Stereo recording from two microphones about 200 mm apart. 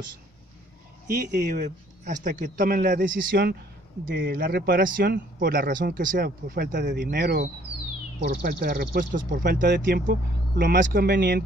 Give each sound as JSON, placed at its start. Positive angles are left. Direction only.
{"t": 1.0, "sound": "speech", "side_deg": -55}
{"t": 1.6, "sound": "speech", "side_deg": -40}